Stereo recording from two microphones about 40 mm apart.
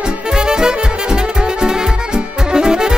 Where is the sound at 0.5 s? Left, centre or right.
Centre.